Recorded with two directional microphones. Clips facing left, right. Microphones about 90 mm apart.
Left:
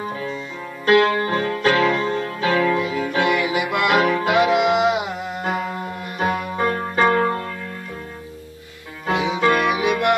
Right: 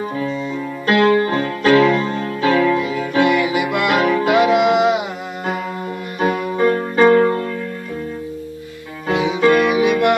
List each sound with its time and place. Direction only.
0.8 s music: 20° left (ahead or behind); by 4.8 s 5° left (ahead or behind)
6.1 s music: 20° left (ahead or behind)
9.1 s music: 10° left (ahead or behind)